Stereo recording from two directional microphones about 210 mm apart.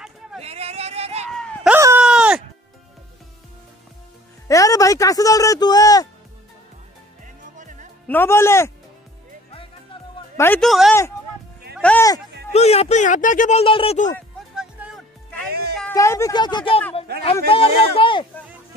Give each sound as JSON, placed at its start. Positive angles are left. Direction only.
{"t": 0.4, "sound": "a sound", "side_deg": -30}
{"t": 1.3, "sound": "a sound", "side_deg": 5}
{"t": 1.7, "sound": "a sound", "side_deg": -10}
{"t": 2.0, "sound": "music", "side_deg": -5}
{"t": 4.5, "sound": "speech", "side_deg": 15}
{"t": 7.5, "sound": "music", "side_deg": -35}
{"t": 8.1, "sound": "speech", "side_deg": 10}
{"t": 10.3, "sound": "a man's voice", "side_deg": 10}
{"t": 12.5, "sound": "speech", "side_deg": 30}
{"t": 14.5, "sound": "music", "side_deg": -5}
{"t": 15.9, "sound": "speech", "side_deg": 15}